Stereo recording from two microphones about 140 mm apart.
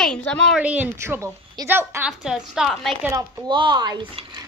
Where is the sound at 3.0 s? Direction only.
20° right (ahead or behind).